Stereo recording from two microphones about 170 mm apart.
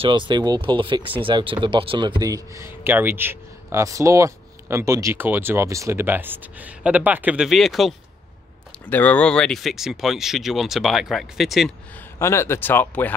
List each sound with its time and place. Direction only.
0.0 s speech: 30° right (ahead or behind); by 11.7 s centre (ahead or behind)
12.2 s speech: 15° left (ahead or behind)